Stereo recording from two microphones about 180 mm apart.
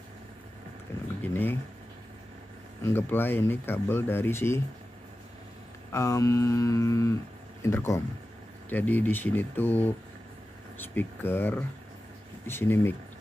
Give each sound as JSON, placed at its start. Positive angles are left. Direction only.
{"t": 1.2, "sound": "speech", "side_deg": 10}
{"t": 2.8, "sound": "speech", "side_deg": 10}
{"t": 5.9, "sound": "speech", "side_deg": 15}